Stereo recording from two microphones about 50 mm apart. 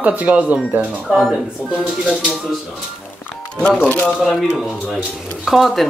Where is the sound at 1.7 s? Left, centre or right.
Centre.